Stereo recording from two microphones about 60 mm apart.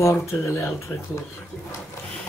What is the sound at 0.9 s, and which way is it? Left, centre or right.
Speech, left.